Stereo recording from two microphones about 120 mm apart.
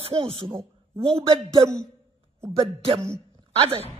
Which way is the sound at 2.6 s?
50° right (ahead or behind).